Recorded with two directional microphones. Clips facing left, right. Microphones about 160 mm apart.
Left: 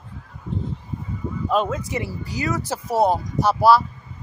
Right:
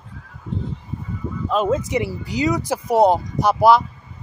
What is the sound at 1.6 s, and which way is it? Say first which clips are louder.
Speech: right 6 dB; 25° right (ahead or behind).